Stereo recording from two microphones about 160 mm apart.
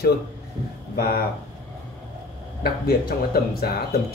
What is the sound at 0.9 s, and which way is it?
Speech, 65° left (ahead or behind).